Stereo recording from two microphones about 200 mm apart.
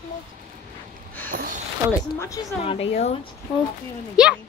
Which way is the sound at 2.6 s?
30° left (ahead or behind).